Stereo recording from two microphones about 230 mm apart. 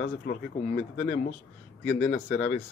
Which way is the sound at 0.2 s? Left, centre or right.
Left.